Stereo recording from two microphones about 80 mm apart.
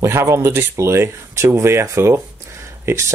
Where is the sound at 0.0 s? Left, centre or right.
Right.